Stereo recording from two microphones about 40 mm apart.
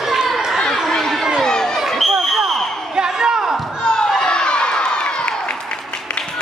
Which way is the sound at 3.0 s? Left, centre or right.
Centre.